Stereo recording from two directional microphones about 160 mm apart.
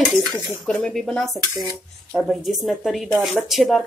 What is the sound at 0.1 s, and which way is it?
Speech, centre (ahead or behind).